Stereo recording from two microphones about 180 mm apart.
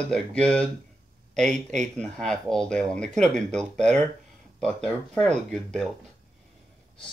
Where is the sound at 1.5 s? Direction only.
40° right (ahead or behind).